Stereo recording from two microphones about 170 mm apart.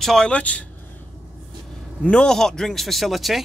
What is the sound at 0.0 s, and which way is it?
Speech, 5° left (ahead or behind).